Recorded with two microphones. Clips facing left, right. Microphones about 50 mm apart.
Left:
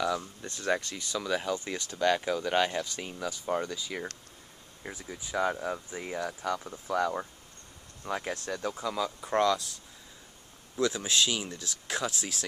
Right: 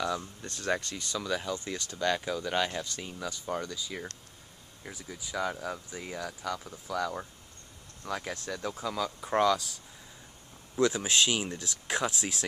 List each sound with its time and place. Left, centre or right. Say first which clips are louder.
0.4 s speech: left 1 dB; centre
3.6 s speech: left 2 dB; left
5.0 s speech: left 3 dB; centre
8.3 s speech: left 2 dB; centre
9.2 s speech: right 1 dB; centre
10.8 s speech: right 2 dB; centre